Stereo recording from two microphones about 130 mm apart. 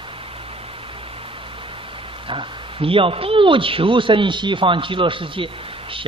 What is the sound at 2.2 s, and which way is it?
A man's voice, 45° right (ahead or behind).